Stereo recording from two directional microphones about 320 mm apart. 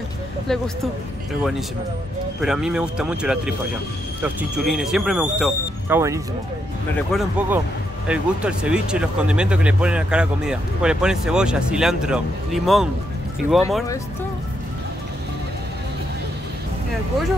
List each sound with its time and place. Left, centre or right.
0.5 s speech: centre
2.4 s speech: centre